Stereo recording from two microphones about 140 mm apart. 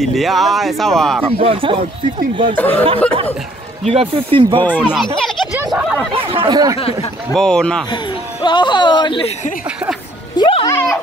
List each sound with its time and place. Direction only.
0.0 s speech: centre (ahead or behind)
1.4 s speech: 40° right (ahead or behind)
2.5 s speech: 10° left (ahead or behind)
3.8 s speech: 40° right (ahead or behind)
4.7 s speech: 5° right (ahead or behind)
5.7 s a sound: 5° right (ahead or behind)
6.1 s chatter: 40° right (ahead or behind)
7.3 s speech: 5° left (ahead or behind)
7.9 s speech: 30° left (ahead or behind)
10.3 s music: 30° left (ahead or behind)